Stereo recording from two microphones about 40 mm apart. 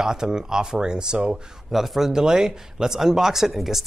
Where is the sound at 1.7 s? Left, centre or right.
Centre.